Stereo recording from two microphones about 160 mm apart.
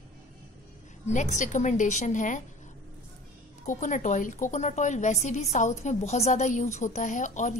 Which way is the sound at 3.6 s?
50° left (ahead or behind).